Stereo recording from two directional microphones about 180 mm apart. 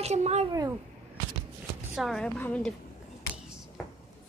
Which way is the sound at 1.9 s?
Centre (ahead or behind).